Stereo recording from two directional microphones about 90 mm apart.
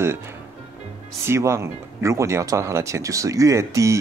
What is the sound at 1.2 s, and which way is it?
Speech, 30° right (ahead or behind).